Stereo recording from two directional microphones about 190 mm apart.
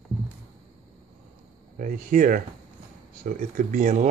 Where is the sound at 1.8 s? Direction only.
45° right (ahead or behind).